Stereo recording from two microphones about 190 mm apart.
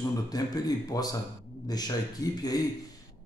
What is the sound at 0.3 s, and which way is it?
Speech, 20° left (ahead or behind).